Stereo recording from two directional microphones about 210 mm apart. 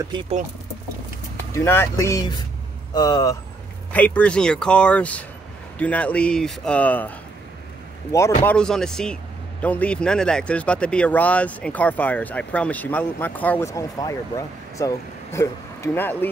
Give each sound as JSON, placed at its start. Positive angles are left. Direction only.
{"t": 1.5, "sound": "speech", "side_deg": 10}
{"t": 3.9, "sound": "speech", "side_deg": 5}